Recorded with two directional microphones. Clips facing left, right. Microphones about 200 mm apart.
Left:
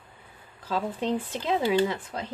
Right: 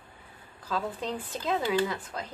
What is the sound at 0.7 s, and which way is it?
Speech, 25° left (ahead or behind).